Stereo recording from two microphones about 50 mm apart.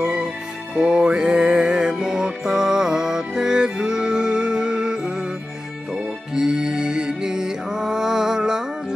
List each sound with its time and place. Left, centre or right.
0.0 s music: centre
6.3 s music: centre